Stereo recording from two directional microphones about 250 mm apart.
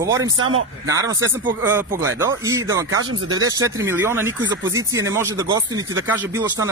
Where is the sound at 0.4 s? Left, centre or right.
Right.